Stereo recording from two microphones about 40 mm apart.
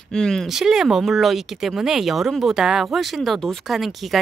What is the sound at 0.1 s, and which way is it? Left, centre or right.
Speech, centre.